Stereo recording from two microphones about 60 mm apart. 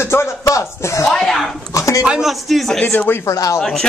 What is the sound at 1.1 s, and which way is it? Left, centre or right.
Speech, centre.